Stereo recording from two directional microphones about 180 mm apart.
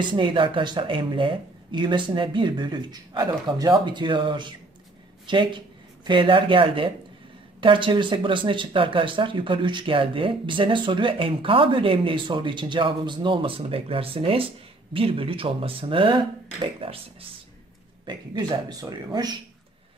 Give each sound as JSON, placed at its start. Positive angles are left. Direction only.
{"t": 0.0, "sound": "speech", "side_deg": -25}